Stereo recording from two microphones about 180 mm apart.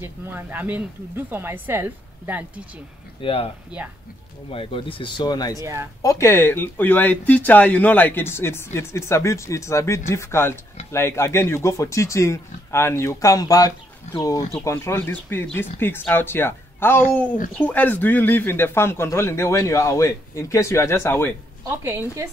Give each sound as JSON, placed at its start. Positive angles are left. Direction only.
{"t": 0.0, "sound": "speech", "side_deg": -10}
{"t": 3.2, "sound": "speech", "side_deg": 30}
{"t": 3.7, "sound": "speech", "side_deg": -5}
{"t": 4.5, "sound": "speech", "side_deg": 30}
{"t": 5.6, "sound": "speech", "side_deg": -15}
{"t": 6.0, "sound": "speech", "side_deg": 15}
{"t": 21.6, "sound": "speech", "side_deg": -15}